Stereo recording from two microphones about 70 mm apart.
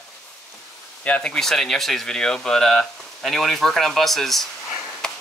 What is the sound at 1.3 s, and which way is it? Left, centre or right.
Speech, centre.